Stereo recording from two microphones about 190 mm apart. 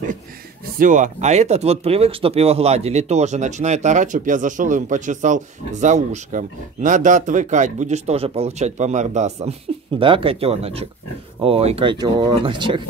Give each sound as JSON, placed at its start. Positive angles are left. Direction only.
{"t": 0.7, "sound": "speech", "side_deg": -45}